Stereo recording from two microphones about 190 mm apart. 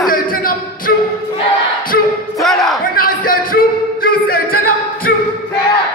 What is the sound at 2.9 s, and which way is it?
Singing, 50° left (ahead or behind).